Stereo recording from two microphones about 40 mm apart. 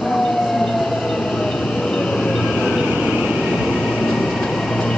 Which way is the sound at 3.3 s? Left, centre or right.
Centre.